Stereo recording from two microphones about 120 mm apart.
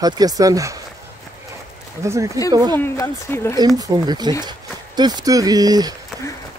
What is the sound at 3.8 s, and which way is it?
Speech, 35° right (ahead or behind).